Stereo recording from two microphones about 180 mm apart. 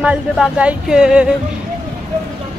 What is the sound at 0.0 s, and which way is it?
A woman's voice, 5° right (ahead or behind).